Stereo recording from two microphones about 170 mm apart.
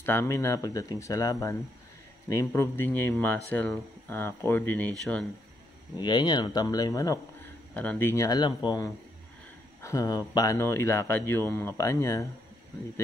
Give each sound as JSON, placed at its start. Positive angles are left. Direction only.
{"t": 0.0, "sound": "speech", "side_deg": 15}
{"t": 5.9, "sound": "speech", "side_deg": 25}
{"t": 7.7, "sound": "speech", "side_deg": 10}